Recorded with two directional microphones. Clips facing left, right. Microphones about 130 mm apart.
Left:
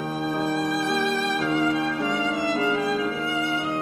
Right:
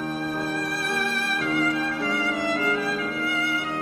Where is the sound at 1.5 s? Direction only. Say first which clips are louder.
Left 1 dB; 20° left (ahead or behind).